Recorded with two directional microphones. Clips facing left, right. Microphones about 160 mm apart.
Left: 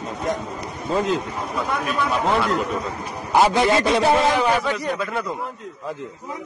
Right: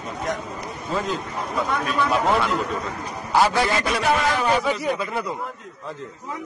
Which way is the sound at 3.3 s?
20° left (ahead or behind).